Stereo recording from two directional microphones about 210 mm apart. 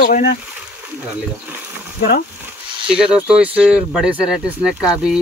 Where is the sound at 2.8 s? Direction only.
5° right (ahead or behind).